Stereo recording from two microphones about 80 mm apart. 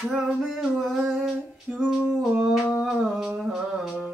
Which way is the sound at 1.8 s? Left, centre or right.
Centre.